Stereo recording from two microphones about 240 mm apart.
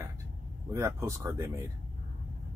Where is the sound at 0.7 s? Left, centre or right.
Centre.